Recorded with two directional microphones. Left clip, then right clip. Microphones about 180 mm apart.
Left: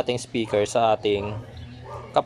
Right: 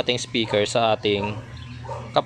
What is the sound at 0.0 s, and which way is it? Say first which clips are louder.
A man's voice: right 2 dB; 5° left (ahead or behind).